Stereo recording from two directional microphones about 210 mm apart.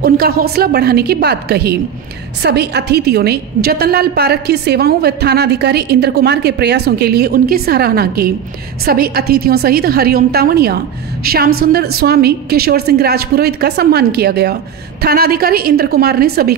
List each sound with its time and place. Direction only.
0.0 s a woman's voice: 45° right (ahead or behind)